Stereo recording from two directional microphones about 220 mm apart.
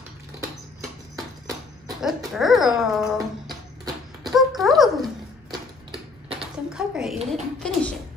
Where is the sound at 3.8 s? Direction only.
20° right (ahead or behind).